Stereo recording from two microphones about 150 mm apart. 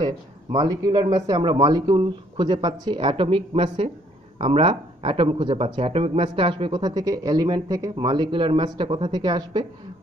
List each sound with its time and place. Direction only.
0.0 s speech: 30° right (ahead or behind)